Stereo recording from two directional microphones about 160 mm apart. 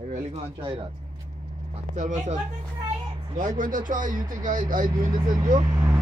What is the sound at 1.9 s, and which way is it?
Speech, 50° right (ahead or behind).